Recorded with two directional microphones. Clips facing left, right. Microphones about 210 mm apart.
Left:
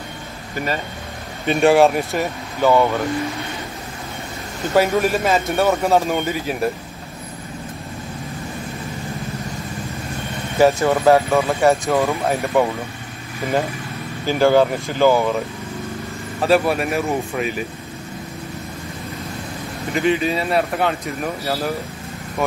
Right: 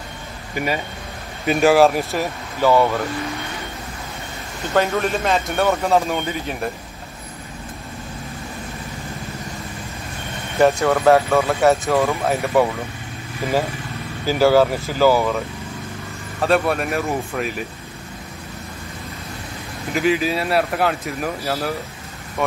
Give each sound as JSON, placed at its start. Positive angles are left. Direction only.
{"t": 0.6, "sound": "speech", "side_deg": -15}
{"t": 1.4, "sound": "speech", "side_deg": 0}
{"t": 4.7, "sound": "speech", "side_deg": 10}
{"t": 10.6, "sound": "speech", "side_deg": 0}
{"t": 14.2, "sound": "speech", "side_deg": -5}
{"t": 16.3, "sound": "speech", "side_deg": 0}
{"t": 19.9, "sound": "speech", "side_deg": -5}